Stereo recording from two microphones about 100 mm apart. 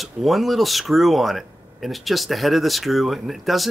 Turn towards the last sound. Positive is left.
turn(degrees=0)  # may be behind; listen again after turning